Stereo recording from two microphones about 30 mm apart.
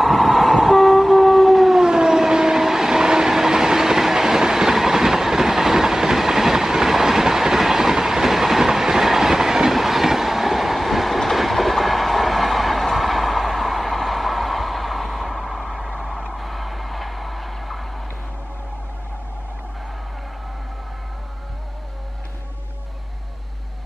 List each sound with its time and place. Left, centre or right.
0.0 s train: centre
1.8 s train: right
9.8 s train: centre
16.3 s a sound: centre